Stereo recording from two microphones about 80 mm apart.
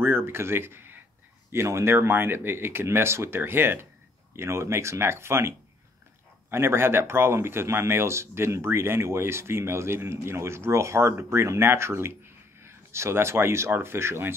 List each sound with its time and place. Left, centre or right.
0.0 s a sound: right
1.5 s speech: right
6.5 s speech: right